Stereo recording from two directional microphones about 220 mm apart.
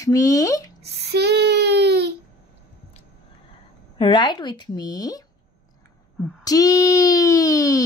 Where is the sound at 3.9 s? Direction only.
20° left (ahead or behind).